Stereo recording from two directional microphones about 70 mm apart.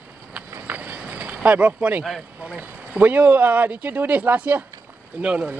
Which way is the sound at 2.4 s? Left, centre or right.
Centre.